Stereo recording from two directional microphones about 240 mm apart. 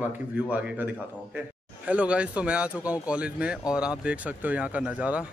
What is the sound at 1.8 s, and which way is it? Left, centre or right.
A man's voice, centre.